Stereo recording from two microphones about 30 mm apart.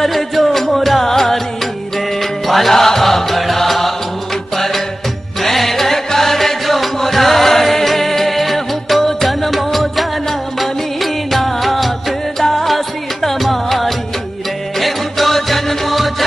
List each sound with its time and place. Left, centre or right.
0.0 s music: centre
2.4 s music: centre
2.7 s music: centre
5.4 s music: centre